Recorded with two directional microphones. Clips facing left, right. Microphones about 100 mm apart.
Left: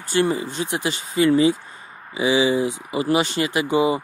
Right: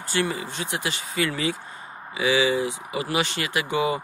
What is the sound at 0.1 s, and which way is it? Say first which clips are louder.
Speech: left 6 dB; 25° left (ahead or behind).